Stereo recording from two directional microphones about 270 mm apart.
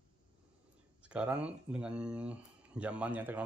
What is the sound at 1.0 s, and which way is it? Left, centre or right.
Speech, centre.